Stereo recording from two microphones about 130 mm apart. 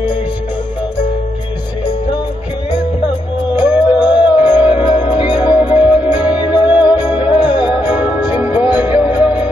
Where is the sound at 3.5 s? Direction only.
15° right (ahead or behind).